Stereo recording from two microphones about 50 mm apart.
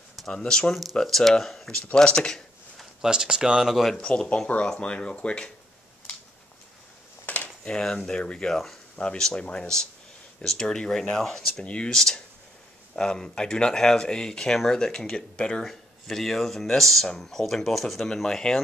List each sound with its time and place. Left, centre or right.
0.3 s speech: centre
2.0 s speech: centre
3.0 s speech: centre
3.7 s speech: centre
4.0 s speech: left
7.3 s a sound: left
7.6 s speech: centre
11.6 s speech: left
11.9 s speech: centre
15.6 s speech: centre